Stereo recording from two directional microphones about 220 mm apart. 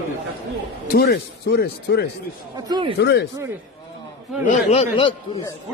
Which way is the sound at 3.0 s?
50° left (ahead or behind).